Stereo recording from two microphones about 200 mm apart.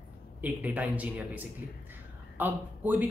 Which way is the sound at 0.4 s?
5° right (ahead or behind).